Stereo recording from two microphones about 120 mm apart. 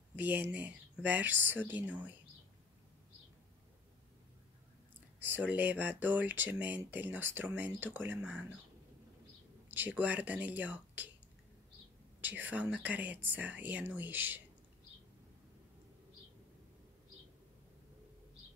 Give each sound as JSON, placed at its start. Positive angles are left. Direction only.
{"t": 0.1, "sound": "speech", "side_deg": -15}
{"t": 5.2, "sound": "speech", "side_deg": -15}
{"t": 9.7, "sound": "speech", "side_deg": -15}
{"t": 12.2, "sound": "speech", "side_deg": -15}